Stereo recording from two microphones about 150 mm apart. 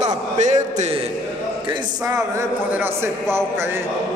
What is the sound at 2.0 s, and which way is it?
A man's voice, 20° right (ahead or behind).